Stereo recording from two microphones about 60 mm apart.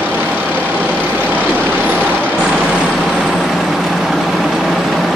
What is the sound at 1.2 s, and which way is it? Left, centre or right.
Vehicle, left.